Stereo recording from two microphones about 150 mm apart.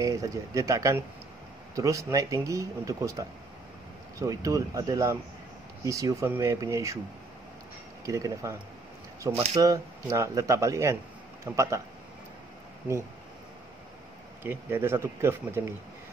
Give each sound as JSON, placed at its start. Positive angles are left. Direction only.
{"t": 0.0, "sound": "speech", "side_deg": -20}
{"t": 8.0, "sound": "speech", "side_deg": -20}
{"t": 14.4, "sound": "speech", "side_deg": -15}